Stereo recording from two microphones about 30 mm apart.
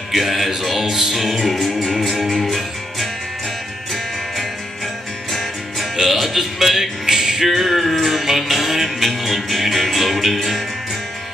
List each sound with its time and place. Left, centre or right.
0.1 s music: centre
6.0 s music: centre
7.4 s music: centre